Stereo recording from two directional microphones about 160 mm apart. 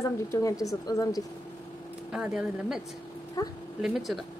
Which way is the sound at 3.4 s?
20° left (ahead or behind).